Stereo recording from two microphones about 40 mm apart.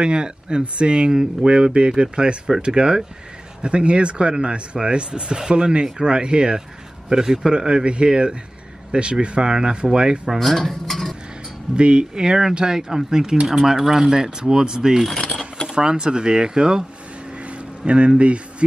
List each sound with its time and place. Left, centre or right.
0.0 s speech: right
10.4 s speech: centre
11.7 s speech: right
12.2 s speech: centre
17.5 s a sound: right